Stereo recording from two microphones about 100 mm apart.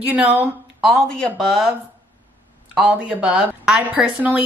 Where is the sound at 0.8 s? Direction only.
Centre (ahead or behind).